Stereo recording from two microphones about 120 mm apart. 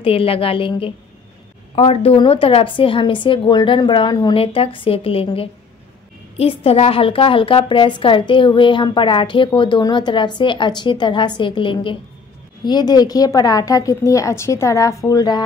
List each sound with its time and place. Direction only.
0.0 s a woman's voice: 50° left (ahead or behind)
12.6 s a woman's voice: 35° left (ahead or behind)